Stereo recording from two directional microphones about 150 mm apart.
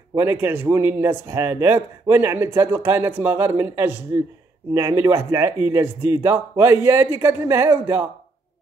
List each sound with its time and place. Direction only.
0.1 s speech: 15° right (ahead or behind)